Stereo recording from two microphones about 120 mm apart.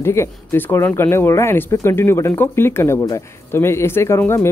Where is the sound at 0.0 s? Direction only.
20° left (ahead or behind).